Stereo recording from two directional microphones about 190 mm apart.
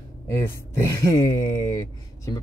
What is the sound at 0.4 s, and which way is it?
Speech, 15° left (ahead or behind).